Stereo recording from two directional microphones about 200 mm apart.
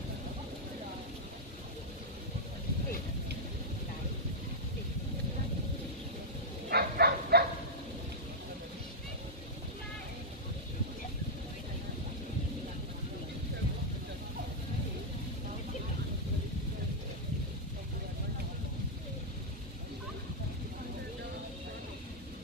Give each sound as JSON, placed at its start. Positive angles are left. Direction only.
{"t": 6.7, "sound": "livestock", "side_deg": -50}